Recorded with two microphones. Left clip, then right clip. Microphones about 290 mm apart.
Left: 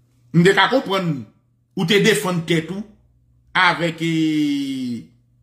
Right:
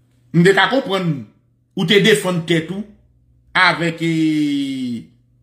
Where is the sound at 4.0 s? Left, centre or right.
Centre.